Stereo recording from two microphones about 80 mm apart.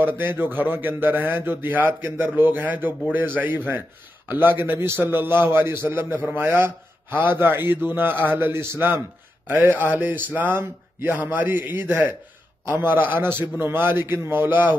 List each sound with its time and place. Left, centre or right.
0.0 s a man's voice: right